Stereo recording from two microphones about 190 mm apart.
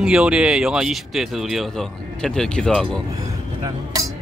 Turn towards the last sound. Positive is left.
turn(degrees=-20)  # may be behind; listen again after turning